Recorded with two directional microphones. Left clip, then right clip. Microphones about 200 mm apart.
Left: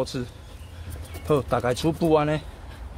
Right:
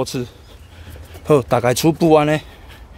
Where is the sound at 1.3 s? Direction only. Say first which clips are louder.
Right 8 dB; 55° right (ahead or behind).